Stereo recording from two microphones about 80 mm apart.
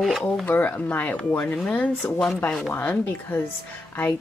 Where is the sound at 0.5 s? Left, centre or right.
Left.